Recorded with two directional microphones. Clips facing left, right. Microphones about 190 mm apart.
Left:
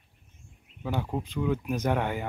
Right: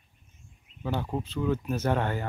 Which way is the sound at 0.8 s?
10° left (ahead or behind).